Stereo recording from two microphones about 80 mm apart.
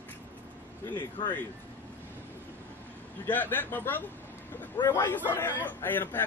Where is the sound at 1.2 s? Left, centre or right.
Left.